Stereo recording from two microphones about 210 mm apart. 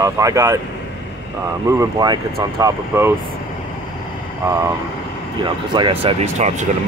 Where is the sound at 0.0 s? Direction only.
15° right (ahead or behind).